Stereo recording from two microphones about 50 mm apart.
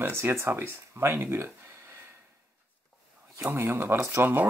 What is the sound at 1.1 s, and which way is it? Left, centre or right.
Speech, right.